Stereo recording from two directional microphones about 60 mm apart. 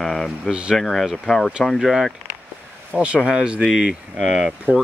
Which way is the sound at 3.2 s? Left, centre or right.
Centre.